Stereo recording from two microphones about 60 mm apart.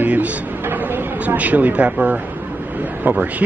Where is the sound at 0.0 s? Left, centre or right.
Right.